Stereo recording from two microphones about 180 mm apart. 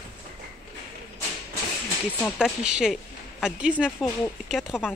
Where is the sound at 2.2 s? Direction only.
5° right (ahead or behind).